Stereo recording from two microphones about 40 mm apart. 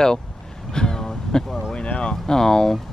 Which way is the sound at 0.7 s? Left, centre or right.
Centre.